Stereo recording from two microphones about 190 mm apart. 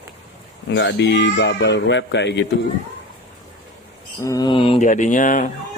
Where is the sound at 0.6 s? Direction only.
65° left (ahead or behind).